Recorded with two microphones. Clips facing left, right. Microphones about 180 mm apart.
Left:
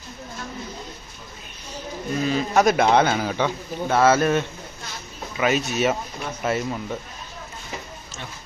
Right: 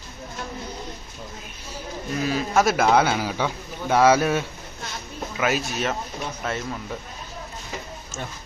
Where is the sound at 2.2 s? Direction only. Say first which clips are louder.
Left 2 dB; 5° right (ahead or behind).